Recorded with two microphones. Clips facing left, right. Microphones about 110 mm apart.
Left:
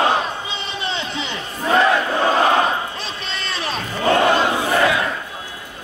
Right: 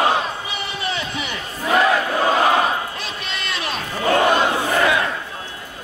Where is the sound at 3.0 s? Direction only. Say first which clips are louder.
Even; 30° left (ahead or behind).